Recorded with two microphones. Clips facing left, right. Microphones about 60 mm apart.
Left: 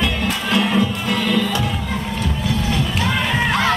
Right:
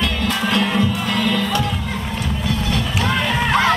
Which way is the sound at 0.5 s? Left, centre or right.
Centre.